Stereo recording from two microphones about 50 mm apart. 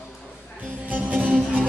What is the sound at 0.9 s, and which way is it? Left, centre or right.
Music, right.